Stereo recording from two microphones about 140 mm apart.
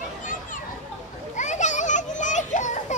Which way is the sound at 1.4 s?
60° left (ahead or behind).